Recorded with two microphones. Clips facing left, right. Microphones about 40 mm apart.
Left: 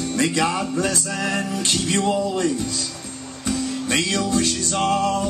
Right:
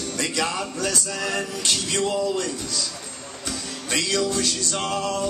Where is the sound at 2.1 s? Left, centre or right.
Left.